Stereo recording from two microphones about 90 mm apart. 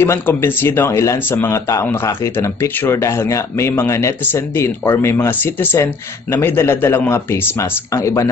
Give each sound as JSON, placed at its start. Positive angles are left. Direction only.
{"t": 0.0, "sound": "speech", "side_deg": 25}